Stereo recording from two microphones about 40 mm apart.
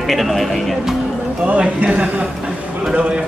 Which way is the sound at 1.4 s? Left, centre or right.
Right.